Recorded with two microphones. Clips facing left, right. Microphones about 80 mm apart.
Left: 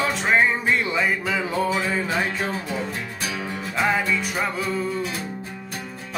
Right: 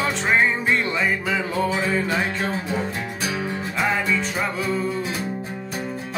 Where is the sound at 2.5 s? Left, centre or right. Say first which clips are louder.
Right 2 dB; right.